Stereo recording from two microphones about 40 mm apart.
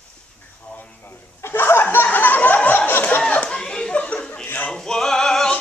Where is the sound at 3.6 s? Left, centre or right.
Centre.